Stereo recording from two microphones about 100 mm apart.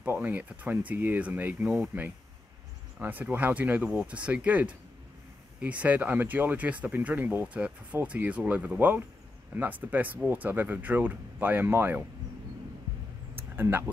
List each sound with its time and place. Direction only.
0.0 s speech: 15° right (ahead or behind)
3.0 s speech: 20° right (ahead or behind)
13.6 s speech: 20° right (ahead or behind)